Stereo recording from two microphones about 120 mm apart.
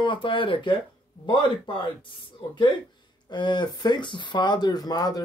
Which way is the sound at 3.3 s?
40° left (ahead or behind).